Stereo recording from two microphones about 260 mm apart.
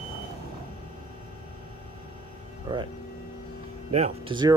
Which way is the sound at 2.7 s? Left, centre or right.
Centre.